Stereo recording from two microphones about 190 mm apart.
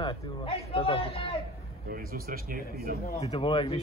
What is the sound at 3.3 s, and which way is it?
Speech, 30° left (ahead or behind).